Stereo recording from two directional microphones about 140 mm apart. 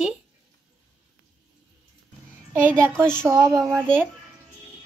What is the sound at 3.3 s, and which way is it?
Speech, 25° right (ahead or behind).